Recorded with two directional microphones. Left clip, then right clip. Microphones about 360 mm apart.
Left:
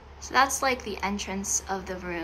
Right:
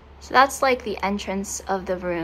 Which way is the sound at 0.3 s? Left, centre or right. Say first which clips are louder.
Right 6 dB; centre.